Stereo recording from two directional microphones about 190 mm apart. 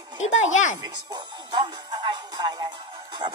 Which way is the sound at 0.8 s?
20° right (ahead or behind).